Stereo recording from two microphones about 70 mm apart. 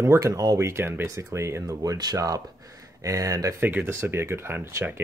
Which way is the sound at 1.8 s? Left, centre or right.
Right.